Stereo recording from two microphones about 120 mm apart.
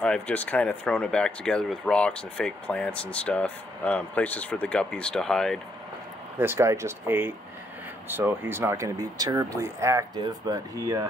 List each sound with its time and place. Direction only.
0.0 s speech: 10° left (ahead or behind)
6.3 s speech: 20° right (ahead or behind)